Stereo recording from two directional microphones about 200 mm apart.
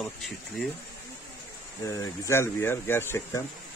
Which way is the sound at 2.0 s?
10° left (ahead or behind).